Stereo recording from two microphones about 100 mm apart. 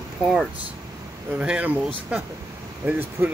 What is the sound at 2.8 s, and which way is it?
Speech, 20° right (ahead or behind).